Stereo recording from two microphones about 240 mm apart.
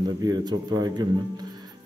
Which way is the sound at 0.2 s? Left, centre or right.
Centre.